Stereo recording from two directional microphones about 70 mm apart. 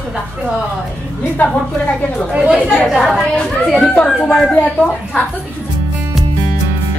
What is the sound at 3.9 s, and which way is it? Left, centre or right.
Speech, centre.